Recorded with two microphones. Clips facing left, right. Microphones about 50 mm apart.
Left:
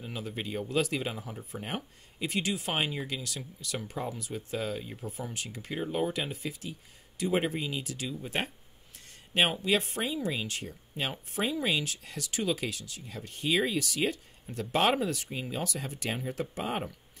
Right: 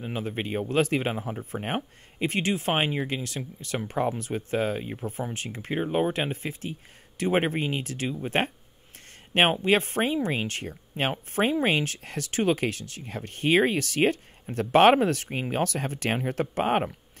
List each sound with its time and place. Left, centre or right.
0.0 s speech: right